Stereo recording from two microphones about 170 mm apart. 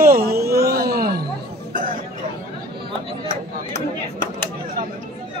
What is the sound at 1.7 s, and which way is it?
Chatter, 55° right (ahead or behind).